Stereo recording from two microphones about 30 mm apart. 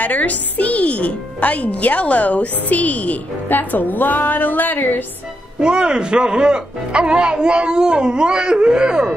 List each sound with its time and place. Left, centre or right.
0.0 s speech: left
5.6 s speech: right